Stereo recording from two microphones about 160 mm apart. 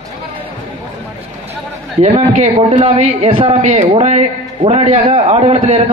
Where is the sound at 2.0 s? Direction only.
45° right (ahead or behind).